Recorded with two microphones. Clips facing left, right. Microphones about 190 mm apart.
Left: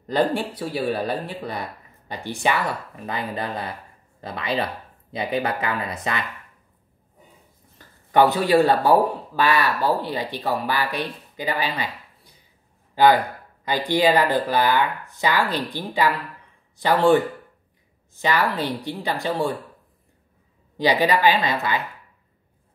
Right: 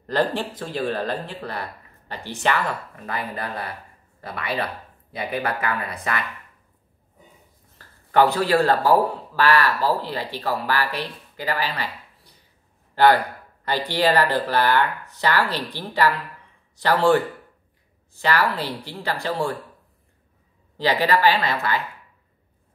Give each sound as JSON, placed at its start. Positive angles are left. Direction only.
{"t": 0.0, "sound": "speech", "side_deg": 10}
{"t": 7.7, "sound": "speech", "side_deg": 15}
{"t": 12.9, "sound": "speech", "side_deg": 15}
{"t": 18.2, "sound": "speech", "side_deg": 15}
{"t": 20.7, "sound": "speech", "side_deg": 15}